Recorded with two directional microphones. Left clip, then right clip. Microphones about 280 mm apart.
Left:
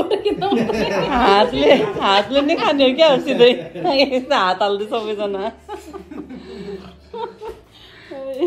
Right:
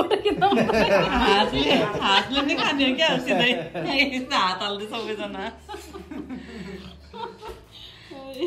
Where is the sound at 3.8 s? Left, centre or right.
Centre.